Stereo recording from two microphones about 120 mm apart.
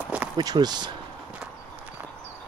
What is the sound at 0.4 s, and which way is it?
Speech, 35° right (ahead or behind).